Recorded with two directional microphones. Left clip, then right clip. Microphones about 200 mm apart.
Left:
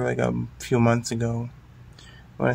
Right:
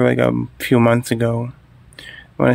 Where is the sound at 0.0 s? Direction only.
50° right (ahead or behind).